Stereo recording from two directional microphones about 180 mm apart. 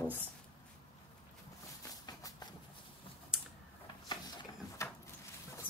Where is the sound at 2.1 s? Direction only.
20° left (ahead or behind).